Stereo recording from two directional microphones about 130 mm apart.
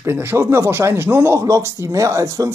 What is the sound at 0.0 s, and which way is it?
Speech, 20° right (ahead or behind).